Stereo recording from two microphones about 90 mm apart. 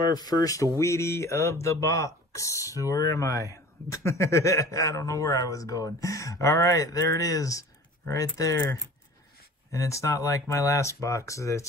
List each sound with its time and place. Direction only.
0.1 s speech: 45° left (ahead or behind)
9.7 s speech: 35° left (ahead or behind)